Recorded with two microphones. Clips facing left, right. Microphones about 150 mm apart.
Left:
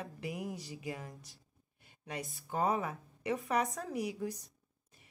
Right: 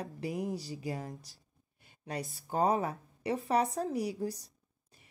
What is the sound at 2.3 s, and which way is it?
A woman's voice, 40° right (ahead or behind).